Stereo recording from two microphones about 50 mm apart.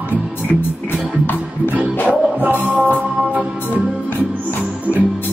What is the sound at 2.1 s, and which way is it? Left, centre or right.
Music, right.